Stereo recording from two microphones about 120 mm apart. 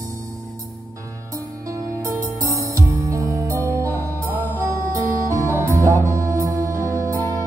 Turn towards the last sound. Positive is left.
turn(degrees=-25)  # may be behind; listen again after turning